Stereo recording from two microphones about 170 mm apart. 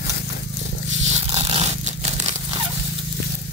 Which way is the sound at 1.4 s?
35° right (ahead or behind).